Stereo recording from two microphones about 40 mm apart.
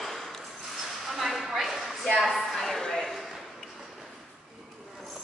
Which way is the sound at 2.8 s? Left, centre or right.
Centre.